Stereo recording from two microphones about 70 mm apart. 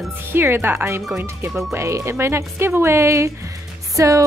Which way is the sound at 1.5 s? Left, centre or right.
Centre.